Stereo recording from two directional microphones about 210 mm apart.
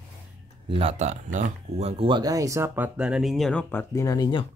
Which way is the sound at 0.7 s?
25° right (ahead or behind).